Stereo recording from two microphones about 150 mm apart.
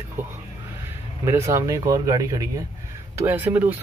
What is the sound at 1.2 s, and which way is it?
Speech, 20° right (ahead or behind).